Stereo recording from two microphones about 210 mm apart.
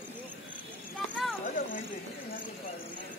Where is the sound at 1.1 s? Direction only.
Centre (ahead or behind).